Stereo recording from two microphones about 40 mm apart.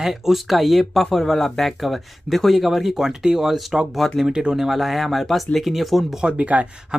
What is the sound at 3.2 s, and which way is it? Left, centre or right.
Speech, centre.